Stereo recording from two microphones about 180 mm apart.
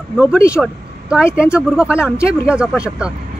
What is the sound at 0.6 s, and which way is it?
Vehicle, 5° right (ahead or behind).